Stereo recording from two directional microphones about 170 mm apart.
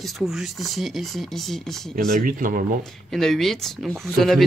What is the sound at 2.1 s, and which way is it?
Speech, 55° right (ahead or behind).